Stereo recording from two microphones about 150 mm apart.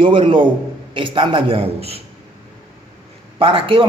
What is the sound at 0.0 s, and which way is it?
A man's voice, 35° right (ahead or behind).